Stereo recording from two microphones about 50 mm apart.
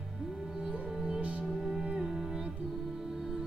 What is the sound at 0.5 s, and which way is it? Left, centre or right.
Music, right.